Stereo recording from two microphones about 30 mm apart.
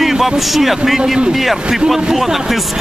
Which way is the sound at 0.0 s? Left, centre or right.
Centre.